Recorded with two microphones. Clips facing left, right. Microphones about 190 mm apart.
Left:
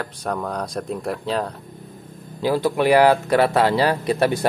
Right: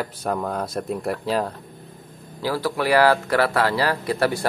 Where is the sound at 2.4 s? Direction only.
20° left (ahead or behind).